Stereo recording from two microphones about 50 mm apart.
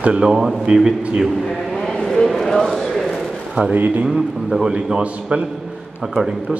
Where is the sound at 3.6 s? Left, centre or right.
Right.